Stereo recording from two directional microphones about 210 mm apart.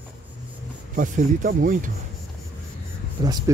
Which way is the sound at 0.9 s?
40° right (ahead or behind).